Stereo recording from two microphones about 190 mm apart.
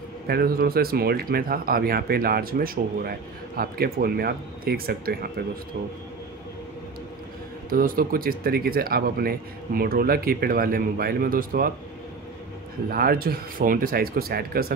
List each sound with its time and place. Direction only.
0.3 s speech: 55° right (ahead or behind)
7.7 s speech: 50° right (ahead or behind)
12.9 s speech: 50° right (ahead or behind)